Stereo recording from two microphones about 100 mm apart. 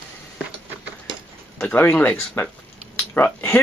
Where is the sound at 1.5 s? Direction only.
20° left (ahead or behind).